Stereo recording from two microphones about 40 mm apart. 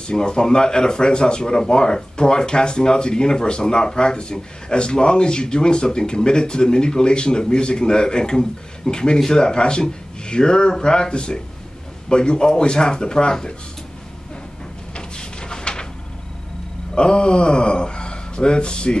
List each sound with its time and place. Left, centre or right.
0.0 s speech: centre
15.0 s drawer open or close: left
16.9 s speech: left